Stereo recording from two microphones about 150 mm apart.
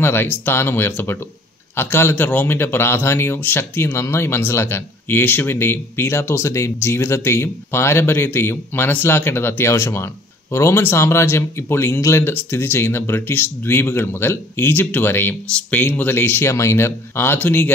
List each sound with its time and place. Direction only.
0.0 s speech: 15° left (ahead or behind)